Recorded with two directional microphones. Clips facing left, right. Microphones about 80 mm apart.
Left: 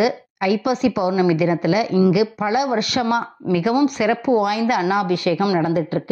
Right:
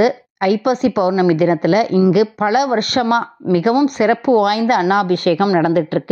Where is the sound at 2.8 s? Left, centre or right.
Right.